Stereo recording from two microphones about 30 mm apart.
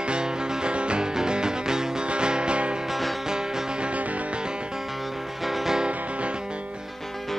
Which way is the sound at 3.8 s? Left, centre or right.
Right.